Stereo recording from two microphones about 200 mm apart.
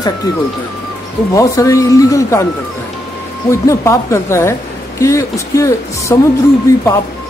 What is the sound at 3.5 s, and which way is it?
Speech, 15° left (ahead or behind).